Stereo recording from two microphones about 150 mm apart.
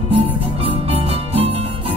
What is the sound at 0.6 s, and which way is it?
Music, 40° right (ahead or behind).